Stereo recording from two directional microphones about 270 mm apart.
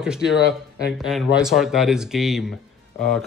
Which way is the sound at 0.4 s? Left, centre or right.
Left.